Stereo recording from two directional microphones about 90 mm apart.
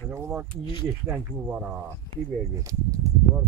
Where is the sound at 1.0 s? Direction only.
15° right (ahead or behind).